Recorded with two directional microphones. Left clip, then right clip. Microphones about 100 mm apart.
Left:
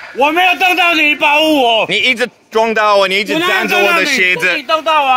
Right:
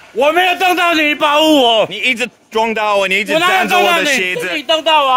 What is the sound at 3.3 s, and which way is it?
Speech, 30° right (ahead or behind).